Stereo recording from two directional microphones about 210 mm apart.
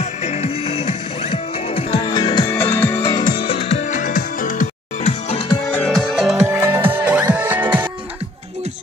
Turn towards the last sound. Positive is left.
turn(degrees=-10)  # may be behind; listen again after turning